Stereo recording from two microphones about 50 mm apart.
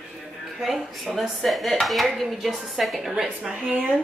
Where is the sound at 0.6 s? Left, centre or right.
Centre.